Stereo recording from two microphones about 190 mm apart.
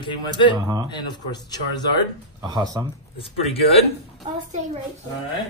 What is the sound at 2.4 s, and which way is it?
Speech, 20° right (ahead or behind).